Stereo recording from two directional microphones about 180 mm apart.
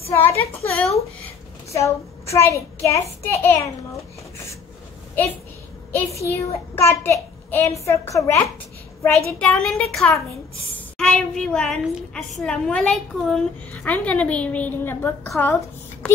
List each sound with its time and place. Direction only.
0.1 s a child's voice: 15° left (ahead or behind)
5.9 s a child's voice: 15° left (ahead or behind)
9.0 s a woman's voice: 5° left (ahead or behind)